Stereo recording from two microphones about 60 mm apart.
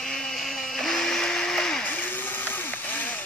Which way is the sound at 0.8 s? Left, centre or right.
Centre.